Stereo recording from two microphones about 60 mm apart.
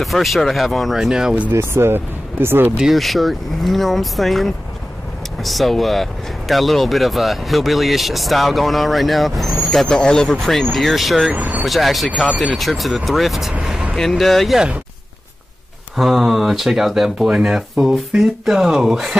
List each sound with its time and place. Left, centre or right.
0.0 s speech: centre
0.9 s speech: centre
1.5 s speech: right
2.8 s speech: centre
11.3 s speech: right
11.6 s speech: centre
13.9 s speech: centre
16.0 s speech: centre